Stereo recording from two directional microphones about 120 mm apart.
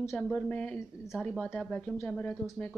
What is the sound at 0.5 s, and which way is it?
Speech, 10° left (ahead or behind).